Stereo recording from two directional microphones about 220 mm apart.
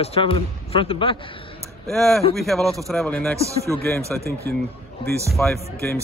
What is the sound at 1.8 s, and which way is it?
A man's voice, centre (ahead or behind).